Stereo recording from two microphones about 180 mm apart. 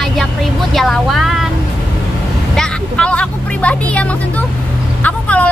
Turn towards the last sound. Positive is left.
turn(degrees=10)  # may be behind; listen again after turning